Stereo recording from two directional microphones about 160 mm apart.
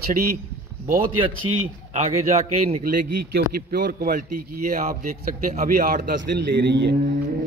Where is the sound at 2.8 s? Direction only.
65° right (ahead or behind).